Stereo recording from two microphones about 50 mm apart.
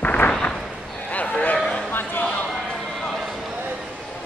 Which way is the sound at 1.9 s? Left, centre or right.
Left.